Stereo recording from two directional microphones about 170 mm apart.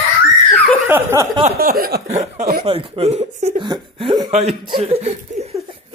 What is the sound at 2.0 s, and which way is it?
Speech, 40° right (ahead or behind).